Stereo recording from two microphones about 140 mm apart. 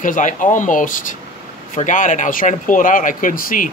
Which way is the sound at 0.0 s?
65° left (ahead or behind).